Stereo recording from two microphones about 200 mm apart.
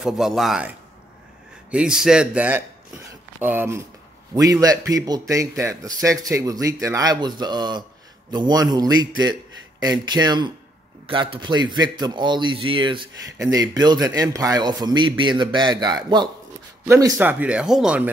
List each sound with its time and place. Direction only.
0.0 s a man's voice: centre (ahead or behind)